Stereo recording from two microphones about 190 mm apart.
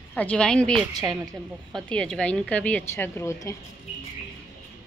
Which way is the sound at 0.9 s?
20° right (ahead or behind).